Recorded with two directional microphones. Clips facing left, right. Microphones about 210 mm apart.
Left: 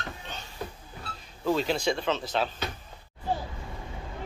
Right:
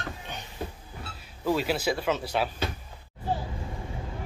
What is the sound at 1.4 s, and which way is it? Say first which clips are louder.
Speech: even; 10° right (ahead or behind).